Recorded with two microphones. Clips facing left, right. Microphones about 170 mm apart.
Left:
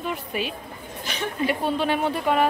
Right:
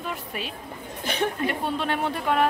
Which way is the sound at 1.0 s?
55° right (ahead or behind).